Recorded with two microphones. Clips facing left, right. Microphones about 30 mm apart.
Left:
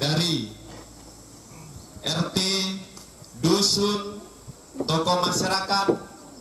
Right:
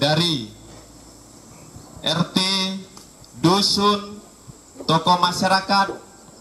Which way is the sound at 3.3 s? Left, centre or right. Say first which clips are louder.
Right 4 dB; right.